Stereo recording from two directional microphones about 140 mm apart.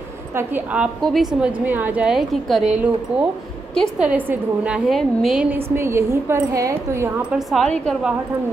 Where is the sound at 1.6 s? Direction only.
15° right (ahead or behind).